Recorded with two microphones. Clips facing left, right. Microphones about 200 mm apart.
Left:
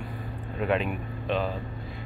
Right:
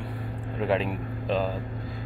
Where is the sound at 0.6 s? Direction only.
30° right (ahead or behind).